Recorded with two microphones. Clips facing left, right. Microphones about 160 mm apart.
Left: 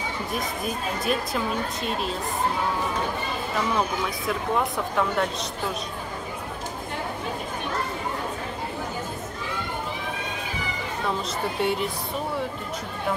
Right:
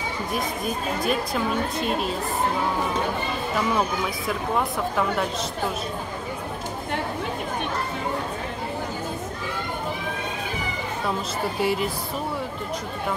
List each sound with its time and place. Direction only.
0.3 s a woman's voice: centre (ahead or behind)
4.3 s a woman's voice: centre (ahead or behind)
11.6 s a woman's voice: centre (ahead or behind)